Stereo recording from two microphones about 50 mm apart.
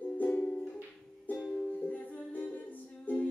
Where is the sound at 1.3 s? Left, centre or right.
Left.